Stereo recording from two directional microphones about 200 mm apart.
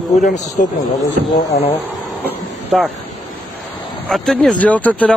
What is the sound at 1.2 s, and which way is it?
Speech, 55° right (ahead or behind).